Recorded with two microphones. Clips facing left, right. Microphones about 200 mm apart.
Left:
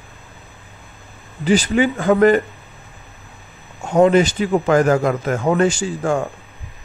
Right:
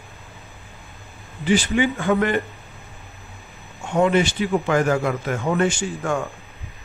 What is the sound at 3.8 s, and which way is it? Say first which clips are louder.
A man's voice: left 5 dB; 40° left (ahead or behind).